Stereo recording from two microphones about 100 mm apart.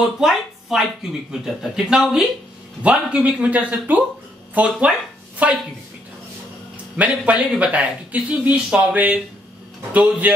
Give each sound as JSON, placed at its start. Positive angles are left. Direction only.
{"t": 0.2, "sound": "speech", "side_deg": -5}
{"t": 7.0, "sound": "speech", "side_deg": -15}
{"t": 10.2, "sound": "music", "side_deg": -15}